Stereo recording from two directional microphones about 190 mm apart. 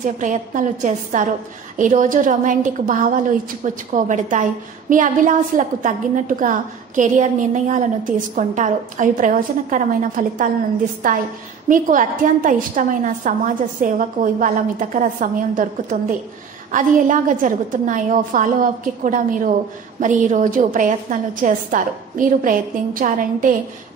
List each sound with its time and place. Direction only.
0.0 s a woman's voice: 40° right (ahead or behind)